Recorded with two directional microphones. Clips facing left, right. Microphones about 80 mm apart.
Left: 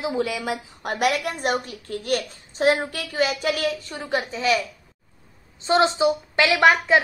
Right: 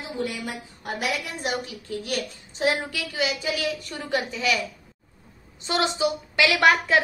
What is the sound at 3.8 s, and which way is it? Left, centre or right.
Speech, left.